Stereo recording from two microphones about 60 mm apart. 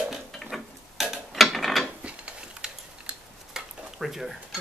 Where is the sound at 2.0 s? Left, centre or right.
Centre.